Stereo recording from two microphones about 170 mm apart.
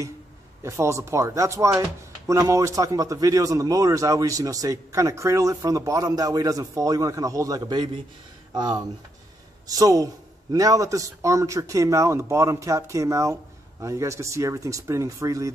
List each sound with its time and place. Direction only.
0.6 s speech: 15° right (ahead or behind)